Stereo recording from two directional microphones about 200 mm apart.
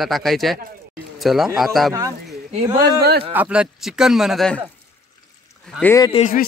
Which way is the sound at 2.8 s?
55° right (ahead or behind).